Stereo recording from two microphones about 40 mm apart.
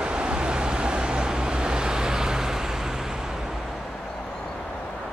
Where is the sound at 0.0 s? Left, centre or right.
Right.